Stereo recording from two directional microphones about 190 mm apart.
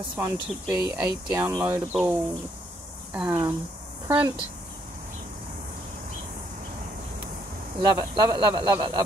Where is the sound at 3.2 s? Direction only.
20° right (ahead or behind).